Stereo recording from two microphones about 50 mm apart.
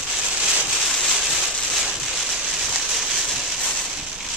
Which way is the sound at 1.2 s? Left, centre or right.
Centre.